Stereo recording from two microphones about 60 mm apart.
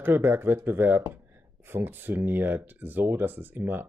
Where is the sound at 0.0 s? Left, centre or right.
Right.